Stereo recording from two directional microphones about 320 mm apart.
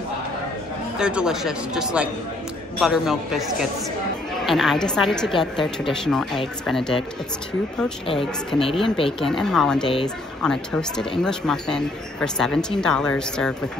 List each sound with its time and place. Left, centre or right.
0.9 s speech: centre
8.5 s speech: centre
9.2 s speech: centre